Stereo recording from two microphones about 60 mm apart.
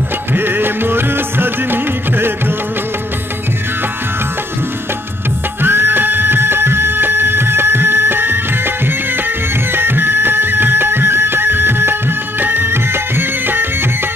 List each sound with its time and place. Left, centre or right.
0.3 s music: right
5.6 s music: right